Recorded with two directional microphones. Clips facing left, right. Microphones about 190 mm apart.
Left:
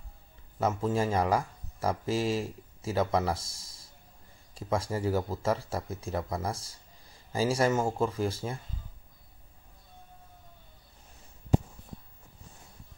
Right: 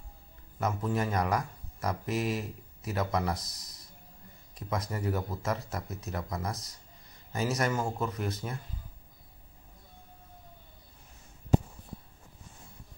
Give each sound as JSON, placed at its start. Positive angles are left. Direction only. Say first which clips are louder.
{"t": 0.6, "sound": "speech", "louder": "left 3 dB", "side_deg": 25}